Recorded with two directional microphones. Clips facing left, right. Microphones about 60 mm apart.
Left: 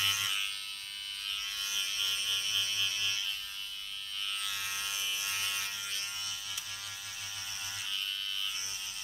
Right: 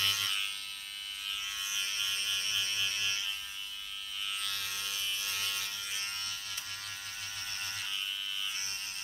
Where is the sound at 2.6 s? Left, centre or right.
Right.